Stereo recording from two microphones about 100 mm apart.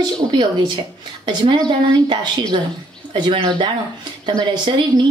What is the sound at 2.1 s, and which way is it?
Speech, 45° right (ahead or behind).